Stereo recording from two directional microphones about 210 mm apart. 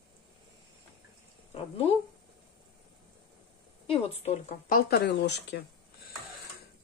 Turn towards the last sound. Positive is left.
turn(degrees=55)  # may be behind; listen again after turning